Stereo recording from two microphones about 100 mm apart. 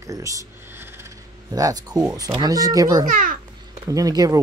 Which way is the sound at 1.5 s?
40° right (ahead or behind).